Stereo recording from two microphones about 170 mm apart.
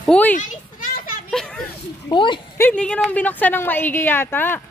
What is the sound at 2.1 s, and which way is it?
Speech, 30° left (ahead or behind).